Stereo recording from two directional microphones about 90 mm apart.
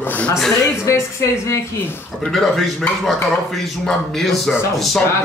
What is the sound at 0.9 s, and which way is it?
A woman's voice, 30° left (ahead or behind).